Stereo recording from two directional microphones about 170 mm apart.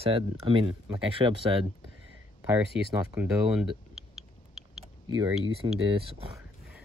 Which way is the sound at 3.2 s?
5° right (ahead or behind).